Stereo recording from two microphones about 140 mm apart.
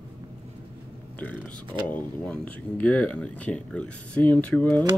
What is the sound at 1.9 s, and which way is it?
Speech, 10° left (ahead or behind).